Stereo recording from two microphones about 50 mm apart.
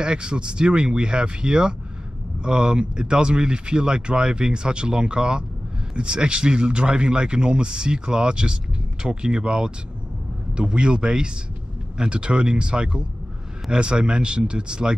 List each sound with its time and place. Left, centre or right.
0.0 s speech: centre